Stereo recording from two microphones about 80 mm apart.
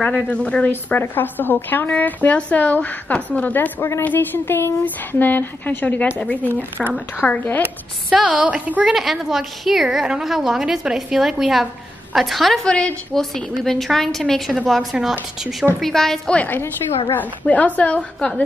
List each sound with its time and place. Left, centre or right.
0.0 s a woman's voice: centre
0.7 s a woman's voice: left
8.2 s a woman's voice: centre
8.8 s a woman's voice: centre
12.6 s a woman's voice: centre
16.3 s a woman's voice: left